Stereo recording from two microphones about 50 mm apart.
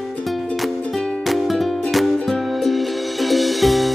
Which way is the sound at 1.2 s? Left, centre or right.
Centre.